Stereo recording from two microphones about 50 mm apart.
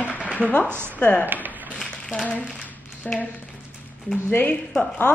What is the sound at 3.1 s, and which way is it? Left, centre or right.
Speech, centre.